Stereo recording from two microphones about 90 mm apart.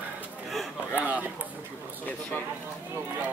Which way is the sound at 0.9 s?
20° right (ahead or behind).